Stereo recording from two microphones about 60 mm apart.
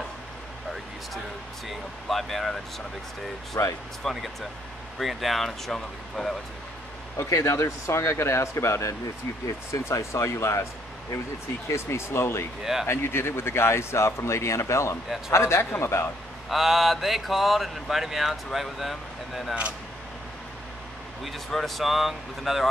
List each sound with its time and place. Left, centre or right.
1.7 s speech: centre
3.6 s speech: left
4.0 s speech: centre
7.2 s speech: left
16.4 s speech: centre
21.2 s speech: centre